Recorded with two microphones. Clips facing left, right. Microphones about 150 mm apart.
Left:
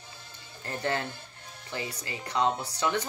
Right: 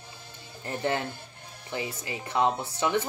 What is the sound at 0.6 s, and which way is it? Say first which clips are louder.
A woman's voice: right 2 dB; 15° right (ahead or behind).